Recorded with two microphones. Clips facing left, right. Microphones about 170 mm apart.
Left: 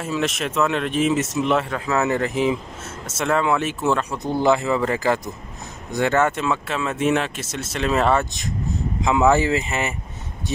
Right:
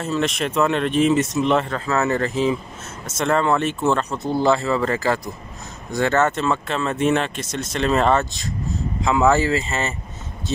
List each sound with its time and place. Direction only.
0.0 s speech: 5° left (ahead or behind)
3.2 s speech: 5° left (ahead or behind)